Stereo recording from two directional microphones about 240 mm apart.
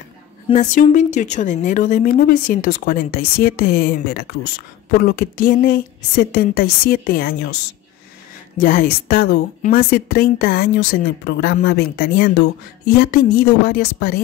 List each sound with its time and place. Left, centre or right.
0.5 s speech: left
8.5 s speech: left